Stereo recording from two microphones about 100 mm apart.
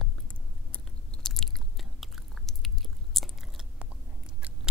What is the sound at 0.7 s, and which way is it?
Biting, 10° left (ahead or behind).